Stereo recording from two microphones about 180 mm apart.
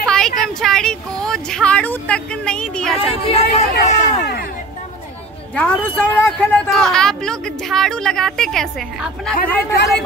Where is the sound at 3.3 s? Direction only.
35° left (ahead or behind).